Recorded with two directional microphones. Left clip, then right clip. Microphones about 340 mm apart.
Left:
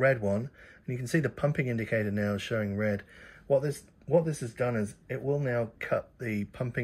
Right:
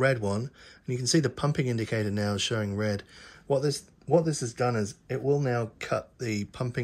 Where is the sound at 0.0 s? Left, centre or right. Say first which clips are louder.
Even; centre.